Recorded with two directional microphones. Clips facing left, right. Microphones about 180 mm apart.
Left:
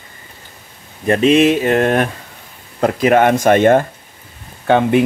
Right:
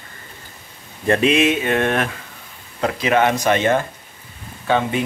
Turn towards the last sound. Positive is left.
turn(degrees=55)  # may be behind; listen again after turning